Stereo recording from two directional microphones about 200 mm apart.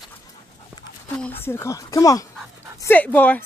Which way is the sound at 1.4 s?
15° left (ahead or behind).